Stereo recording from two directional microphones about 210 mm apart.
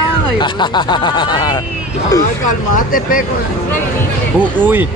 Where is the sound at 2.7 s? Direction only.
40° left (ahead or behind).